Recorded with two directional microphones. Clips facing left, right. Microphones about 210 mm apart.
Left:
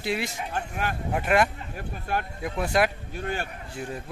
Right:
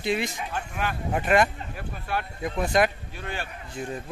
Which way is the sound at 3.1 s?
45° left (ahead or behind).